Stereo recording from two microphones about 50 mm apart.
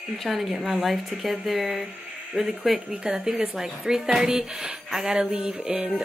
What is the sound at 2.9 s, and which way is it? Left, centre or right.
Speech, centre.